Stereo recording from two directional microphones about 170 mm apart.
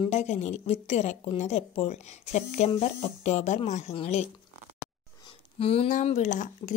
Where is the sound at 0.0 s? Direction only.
40° left (ahead or behind).